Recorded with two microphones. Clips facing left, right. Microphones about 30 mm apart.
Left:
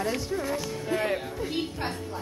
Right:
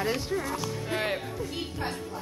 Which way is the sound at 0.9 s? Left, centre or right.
Right.